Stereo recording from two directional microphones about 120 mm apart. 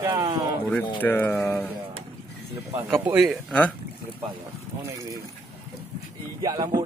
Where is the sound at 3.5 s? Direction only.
10° left (ahead or behind).